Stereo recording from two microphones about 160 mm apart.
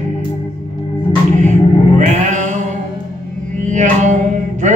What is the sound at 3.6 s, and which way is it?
Music, 50° right (ahead or behind).